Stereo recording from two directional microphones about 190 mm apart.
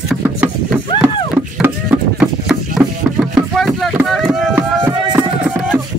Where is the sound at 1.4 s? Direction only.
10° right (ahead or behind).